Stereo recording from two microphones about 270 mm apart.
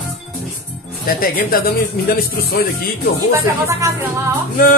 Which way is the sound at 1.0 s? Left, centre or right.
Left.